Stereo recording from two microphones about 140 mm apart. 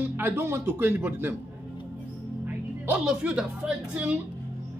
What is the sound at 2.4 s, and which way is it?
A woman's voice, 10° right (ahead or behind).